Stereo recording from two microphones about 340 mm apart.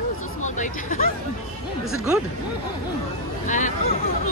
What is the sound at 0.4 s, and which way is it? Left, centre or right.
Speech, left.